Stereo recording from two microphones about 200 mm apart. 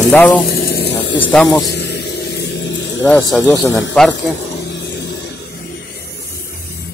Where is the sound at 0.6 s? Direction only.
55° left (ahead or behind).